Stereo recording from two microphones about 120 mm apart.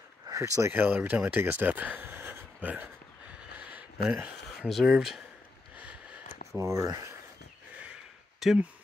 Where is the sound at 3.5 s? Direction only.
10° right (ahead or behind).